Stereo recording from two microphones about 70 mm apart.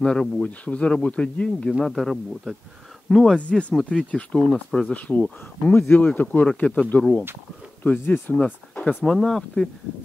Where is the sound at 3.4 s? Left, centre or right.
Centre.